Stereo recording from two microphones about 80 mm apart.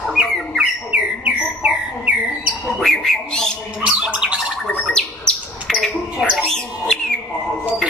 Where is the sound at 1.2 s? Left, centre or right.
Centre.